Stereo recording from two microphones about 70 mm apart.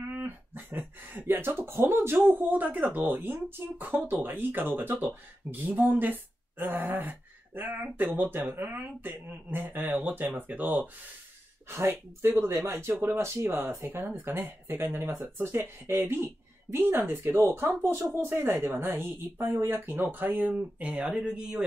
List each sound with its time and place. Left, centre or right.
0.0 s speech: right
11.7 s a woman's voice: right; by 21.6 s centre